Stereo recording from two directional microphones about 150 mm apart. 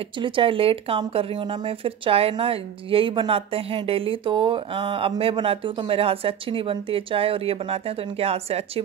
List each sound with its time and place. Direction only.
0.2 s speech: 35° right (ahead or behind)